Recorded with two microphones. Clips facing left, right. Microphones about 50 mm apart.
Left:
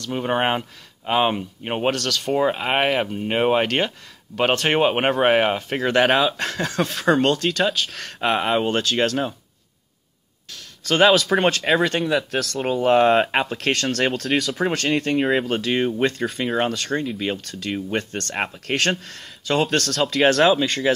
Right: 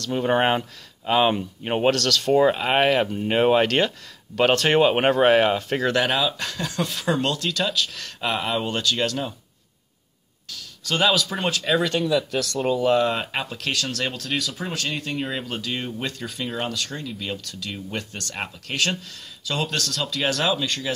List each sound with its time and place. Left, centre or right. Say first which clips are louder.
0.0 s speech: right 1 dB; centre
5.9 s speech: left 5 dB; left
10.8 s speech: left 5 dB; left
12.0 s speech: left 1 dB; left
12.4 s speech: even; left
12.8 s speech: left 8 dB; left
14.3 s speech: left 5 dB; left
14.6 s speech: left 7 dB; left
15.4 s speech: left 8 dB; left